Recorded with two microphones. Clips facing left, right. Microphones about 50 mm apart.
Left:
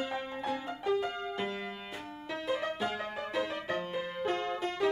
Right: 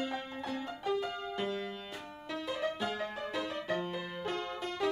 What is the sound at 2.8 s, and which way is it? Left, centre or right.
Music, centre.